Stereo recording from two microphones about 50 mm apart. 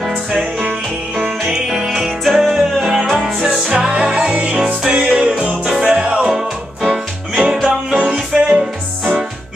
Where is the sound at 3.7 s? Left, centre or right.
Right.